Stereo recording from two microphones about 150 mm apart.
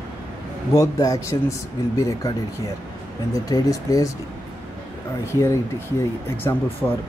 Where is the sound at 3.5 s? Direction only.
25° left (ahead or behind).